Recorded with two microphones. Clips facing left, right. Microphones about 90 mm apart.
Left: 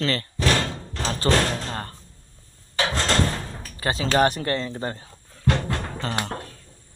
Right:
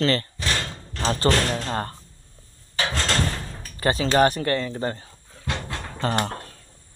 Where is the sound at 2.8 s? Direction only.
20° left (ahead or behind).